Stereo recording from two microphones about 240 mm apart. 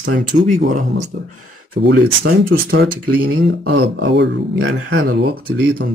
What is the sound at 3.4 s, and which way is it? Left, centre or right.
Speech, right.